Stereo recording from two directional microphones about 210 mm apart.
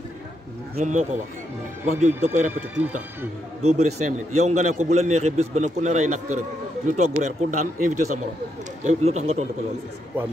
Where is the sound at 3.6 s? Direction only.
30° right (ahead or behind).